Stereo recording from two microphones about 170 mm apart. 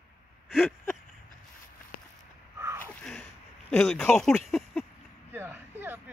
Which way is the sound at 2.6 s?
15° right (ahead or behind).